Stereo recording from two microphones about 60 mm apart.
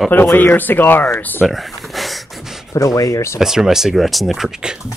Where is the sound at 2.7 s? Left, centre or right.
Left.